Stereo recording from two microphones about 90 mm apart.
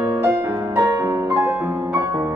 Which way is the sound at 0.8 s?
30° right (ahead or behind).